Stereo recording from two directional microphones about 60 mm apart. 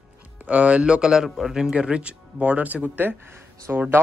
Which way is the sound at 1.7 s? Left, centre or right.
Centre.